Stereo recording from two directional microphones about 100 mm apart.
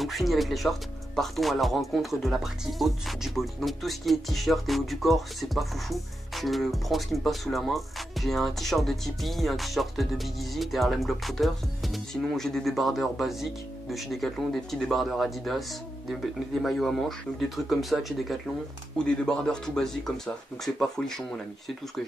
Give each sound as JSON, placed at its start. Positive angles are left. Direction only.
{"t": 0.0, "sound": "speech", "side_deg": 0}